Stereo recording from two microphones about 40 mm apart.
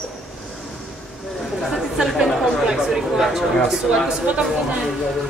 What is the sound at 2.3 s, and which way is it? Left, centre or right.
Chatter, centre.